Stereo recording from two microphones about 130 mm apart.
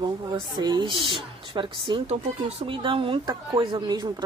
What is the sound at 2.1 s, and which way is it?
Speech, 50° right (ahead or behind).